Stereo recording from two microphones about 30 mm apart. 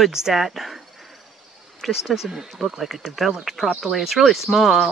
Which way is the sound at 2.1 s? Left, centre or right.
Centre.